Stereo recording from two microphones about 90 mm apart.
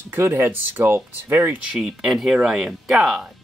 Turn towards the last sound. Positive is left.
turn(degrees=0)  # may be behind; listen again after turning